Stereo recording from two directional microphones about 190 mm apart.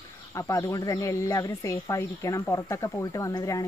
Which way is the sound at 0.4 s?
15° left (ahead or behind).